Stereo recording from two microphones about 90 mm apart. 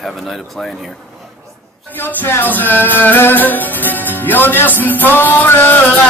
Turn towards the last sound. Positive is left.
turn(degrees=20)  # may be behind; listen again after turning